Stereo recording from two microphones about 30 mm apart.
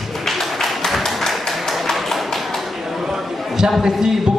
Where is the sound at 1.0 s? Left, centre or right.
Centre.